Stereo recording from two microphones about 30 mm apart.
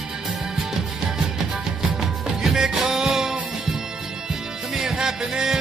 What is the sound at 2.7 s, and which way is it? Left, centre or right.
Music, centre.